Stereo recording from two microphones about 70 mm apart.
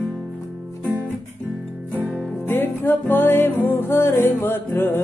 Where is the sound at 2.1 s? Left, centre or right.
Left.